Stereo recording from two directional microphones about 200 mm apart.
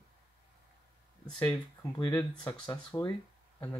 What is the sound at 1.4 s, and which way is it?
Speech, 5° left (ahead or behind).